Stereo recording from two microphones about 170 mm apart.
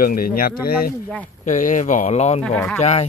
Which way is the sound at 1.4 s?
45° left (ahead or behind).